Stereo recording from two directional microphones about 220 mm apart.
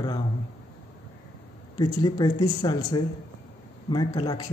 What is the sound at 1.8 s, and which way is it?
Speech, 20° left (ahead or behind).